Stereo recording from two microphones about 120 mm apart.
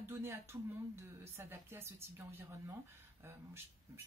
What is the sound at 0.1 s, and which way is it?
Speech, 20° right (ahead or behind).